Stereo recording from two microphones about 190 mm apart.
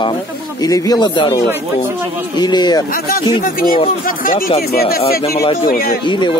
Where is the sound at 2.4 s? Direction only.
20° left (ahead or behind).